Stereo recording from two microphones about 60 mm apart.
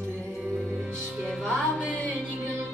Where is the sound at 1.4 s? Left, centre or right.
Centre.